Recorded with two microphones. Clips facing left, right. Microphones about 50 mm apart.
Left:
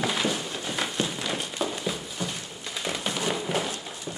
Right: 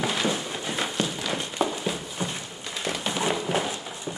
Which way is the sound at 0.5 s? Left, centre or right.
Centre.